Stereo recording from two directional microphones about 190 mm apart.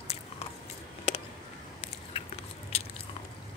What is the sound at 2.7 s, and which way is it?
Biting, 35° left (ahead or behind).